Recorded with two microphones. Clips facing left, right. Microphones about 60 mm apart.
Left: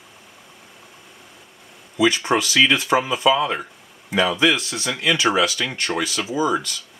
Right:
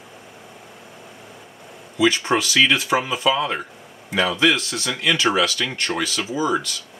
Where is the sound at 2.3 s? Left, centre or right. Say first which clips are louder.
Even; left.